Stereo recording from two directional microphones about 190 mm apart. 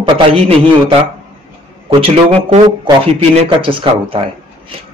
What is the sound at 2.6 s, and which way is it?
Speech, 30° right (ahead or behind).